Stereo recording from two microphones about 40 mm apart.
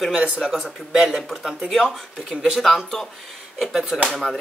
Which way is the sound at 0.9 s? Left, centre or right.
Centre.